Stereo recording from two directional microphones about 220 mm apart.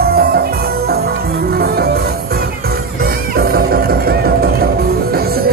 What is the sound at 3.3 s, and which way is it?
Music, 45° right (ahead or behind).